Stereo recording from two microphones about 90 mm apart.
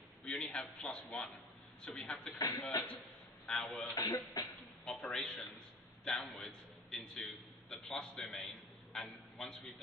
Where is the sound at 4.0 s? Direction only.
45° left (ahead or behind).